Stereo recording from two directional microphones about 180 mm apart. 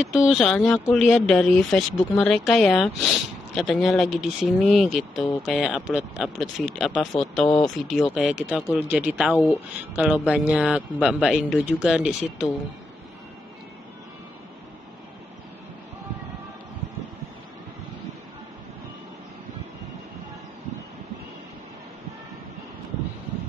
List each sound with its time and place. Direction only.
0.0 s speech: centre (ahead or behind)